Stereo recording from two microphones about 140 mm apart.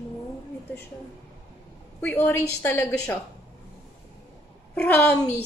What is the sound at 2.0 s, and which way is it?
A woman's voice, 15° left (ahead or behind).